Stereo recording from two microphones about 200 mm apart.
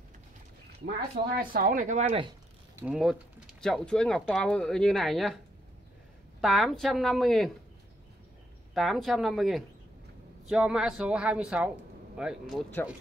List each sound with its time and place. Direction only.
0.8 s speech: 45° right (ahead or behind)
2.7 s speech: 5° right (ahead or behind)
6.4 s speech: centre (ahead or behind)
8.7 s speech: centre (ahead or behind)